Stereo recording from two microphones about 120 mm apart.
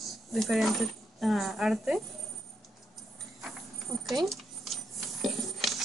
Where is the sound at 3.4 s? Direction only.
Centre (ahead or behind).